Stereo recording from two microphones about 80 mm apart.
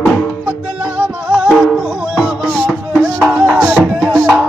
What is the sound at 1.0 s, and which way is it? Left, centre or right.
Music, centre.